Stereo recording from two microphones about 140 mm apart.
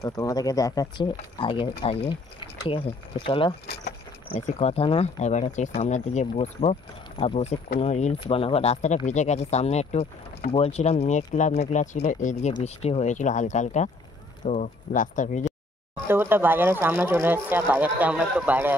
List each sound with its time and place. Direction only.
0.0 s speech: 25° left (ahead or behind)
4.4 s speech: 50° left (ahead or behind)
8.2 s speech: 40° left (ahead or behind); by 15.5 s 65° left (ahead or behind)
16.1 s speech: 15° right (ahead or behind)